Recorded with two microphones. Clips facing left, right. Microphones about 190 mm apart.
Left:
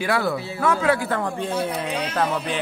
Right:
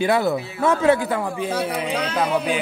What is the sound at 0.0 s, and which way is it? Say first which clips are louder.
A man's voice: right 4 dB; 20° right (ahead or behind).